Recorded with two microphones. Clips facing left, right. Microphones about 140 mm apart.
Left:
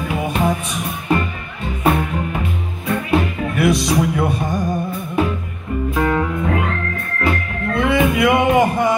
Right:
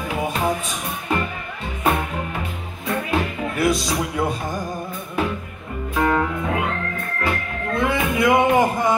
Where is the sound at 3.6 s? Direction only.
65° left (ahead or behind).